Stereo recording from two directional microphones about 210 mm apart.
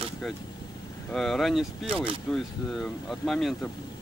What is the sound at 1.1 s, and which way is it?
Speech, centre (ahead or behind).